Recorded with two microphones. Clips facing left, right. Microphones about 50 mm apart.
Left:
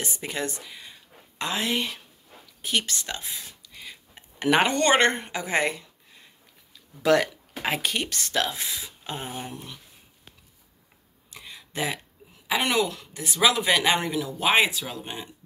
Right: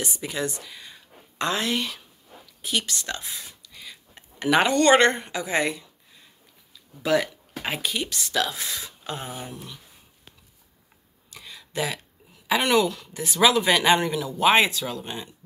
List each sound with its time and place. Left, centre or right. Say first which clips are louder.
0.0 s speech: right 2 dB; left
0.7 s speech: even; centre
1.7 s speech: even; left
2.6 s speech: even; left
7.0 s speech: left 2 dB; left
7.9 s speech: even; left
8.6 s speech: right 1 dB; centre
9.0 s speech: even; left
11.2 s a sound: even; left
12.4 s speech: right 3 dB; centre
13.1 s speech: right 3 dB; centre